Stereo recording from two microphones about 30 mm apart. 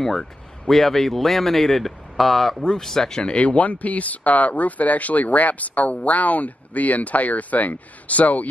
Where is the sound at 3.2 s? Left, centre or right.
Left.